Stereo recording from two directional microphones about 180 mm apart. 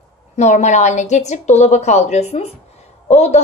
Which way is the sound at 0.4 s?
40° left (ahead or behind).